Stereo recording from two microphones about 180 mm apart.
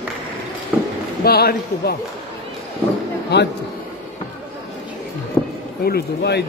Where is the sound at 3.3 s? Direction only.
65° left (ahead or behind).